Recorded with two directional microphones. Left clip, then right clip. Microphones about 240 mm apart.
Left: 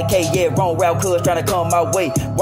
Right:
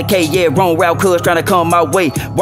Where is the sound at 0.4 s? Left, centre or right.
Right.